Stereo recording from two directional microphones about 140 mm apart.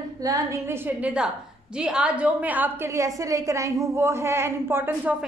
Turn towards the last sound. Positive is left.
turn(degrees=-15)  # may be behind; listen again after turning